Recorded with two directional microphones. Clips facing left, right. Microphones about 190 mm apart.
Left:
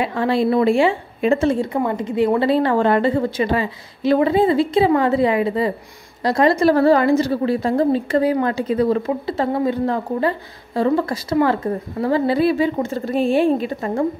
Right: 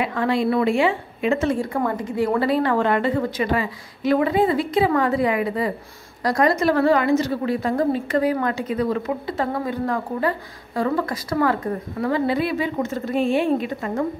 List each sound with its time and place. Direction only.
0.0 s a woman's voice: 30° left (ahead or behind)